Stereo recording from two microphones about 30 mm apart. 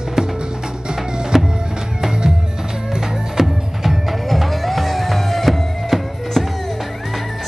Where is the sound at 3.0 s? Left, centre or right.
Centre.